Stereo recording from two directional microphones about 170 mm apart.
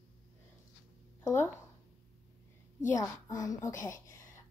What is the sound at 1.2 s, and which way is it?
Speech, 15° left (ahead or behind).